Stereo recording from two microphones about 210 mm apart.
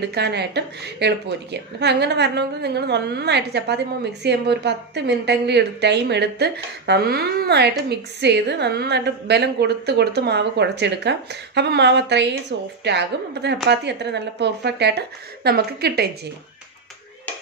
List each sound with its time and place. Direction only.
0.1 s a woman's voice: 50° right (ahead or behind)